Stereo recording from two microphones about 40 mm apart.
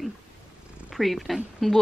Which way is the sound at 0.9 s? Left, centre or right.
Centre.